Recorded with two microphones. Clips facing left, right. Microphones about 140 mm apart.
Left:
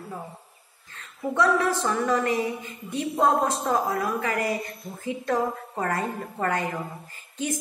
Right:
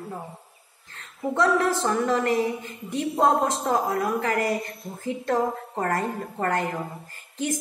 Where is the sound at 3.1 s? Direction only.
30° right (ahead or behind).